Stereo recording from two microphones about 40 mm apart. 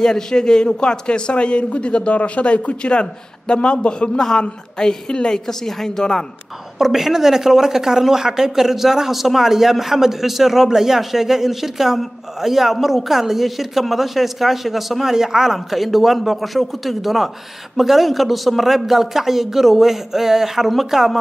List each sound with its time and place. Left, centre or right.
0.0 s a man's voice: centre
5.5 s a woman's voice: centre
6.8 s speech: centre